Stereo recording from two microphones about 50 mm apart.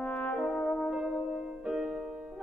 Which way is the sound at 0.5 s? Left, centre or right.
Left.